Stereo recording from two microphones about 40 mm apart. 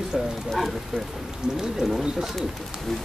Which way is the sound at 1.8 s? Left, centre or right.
Right.